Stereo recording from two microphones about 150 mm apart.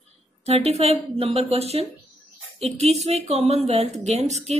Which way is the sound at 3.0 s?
45° right (ahead or behind).